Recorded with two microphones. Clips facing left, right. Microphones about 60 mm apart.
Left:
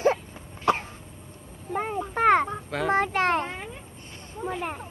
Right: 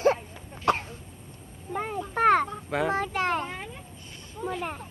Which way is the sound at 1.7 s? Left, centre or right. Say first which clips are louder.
Left 2 dB; centre.